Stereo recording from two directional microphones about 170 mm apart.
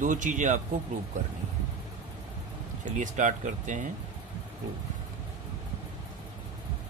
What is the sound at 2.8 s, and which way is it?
Speech, 45° right (ahead or behind).